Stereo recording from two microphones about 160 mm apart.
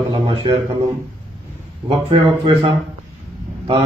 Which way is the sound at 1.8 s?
35° right (ahead or behind).